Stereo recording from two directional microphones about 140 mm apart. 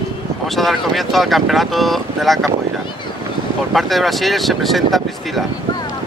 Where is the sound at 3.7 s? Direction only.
Centre (ahead or behind).